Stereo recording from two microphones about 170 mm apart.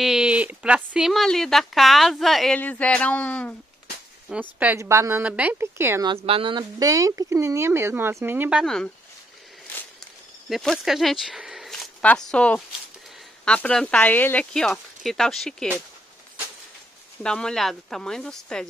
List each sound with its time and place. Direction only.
0.0 s speech: 5° right (ahead or behind)
4.3 s speech: 10° right (ahead or behind)
6.0 s speech: 35° right (ahead or behind); by 8.9 s 5° left (ahead or behind)
10.5 s speech: centre (ahead or behind)
17.2 s speech: 5° left (ahead or behind)